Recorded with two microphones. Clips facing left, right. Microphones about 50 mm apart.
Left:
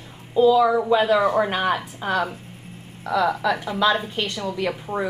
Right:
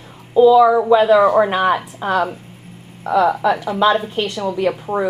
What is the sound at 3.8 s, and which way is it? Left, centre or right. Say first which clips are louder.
A woman's voice: right 5 dB; centre.